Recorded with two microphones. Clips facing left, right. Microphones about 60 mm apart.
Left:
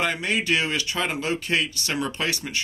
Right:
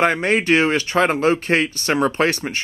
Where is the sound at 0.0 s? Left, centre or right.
Right.